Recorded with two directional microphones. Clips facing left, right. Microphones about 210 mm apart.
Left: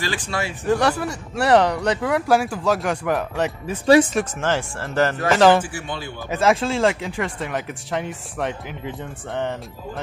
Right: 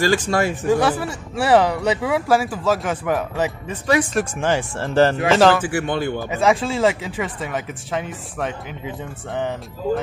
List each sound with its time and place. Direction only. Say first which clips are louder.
0.0 s speech: right 8 dB; 45° right (ahead or behind)
0.7 s speech: left 2 dB; 5° right (ahead or behind)
3.8 s speech: left 5 dB; 30° left (ahead or behind)
4.4 s speech: right 4 dB; 15° right (ahead or behind)
4.7 s speech: right 5 dB; 30° right (ahead or behind)
5.6 s speech: right 7 dB; 65° right (ahead or behind)
6.3 s speech: left 1 dB; centre (ahead or behind)